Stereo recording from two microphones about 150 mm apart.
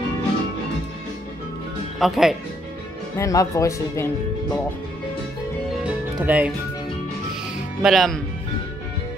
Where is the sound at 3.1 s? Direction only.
20° left (ahead or behind).